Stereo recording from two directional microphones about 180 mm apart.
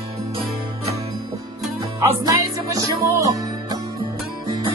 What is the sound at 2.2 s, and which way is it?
Music, 20° right (ahead or behind).